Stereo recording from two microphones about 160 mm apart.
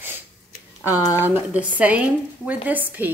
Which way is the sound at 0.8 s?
20° left (ahead or behind).